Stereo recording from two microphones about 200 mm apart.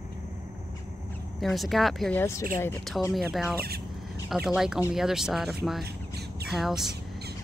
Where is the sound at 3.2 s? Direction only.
Centre (ahead or behind).